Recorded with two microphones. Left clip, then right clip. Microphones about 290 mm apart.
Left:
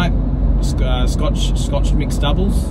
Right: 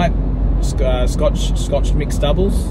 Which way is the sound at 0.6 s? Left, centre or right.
Right.